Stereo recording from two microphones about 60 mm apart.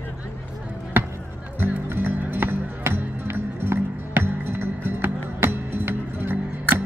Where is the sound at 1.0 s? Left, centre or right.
Right.